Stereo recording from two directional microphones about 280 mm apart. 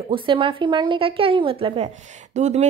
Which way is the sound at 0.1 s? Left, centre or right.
Centre.